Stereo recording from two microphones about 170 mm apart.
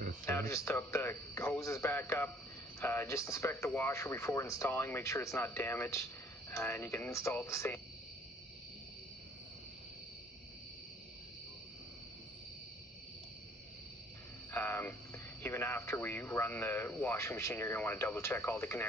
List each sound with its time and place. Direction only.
0.2 s speech: 15° left (ahead or behind)
14.5 s cricket: 10° left (ahead or behind)
15.4 s speech: 15° left (ahead or behind)